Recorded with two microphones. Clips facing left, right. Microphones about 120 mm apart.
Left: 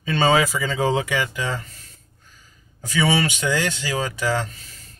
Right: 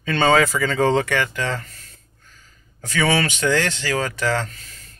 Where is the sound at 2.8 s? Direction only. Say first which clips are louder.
Even; 10° left (ahead or behind).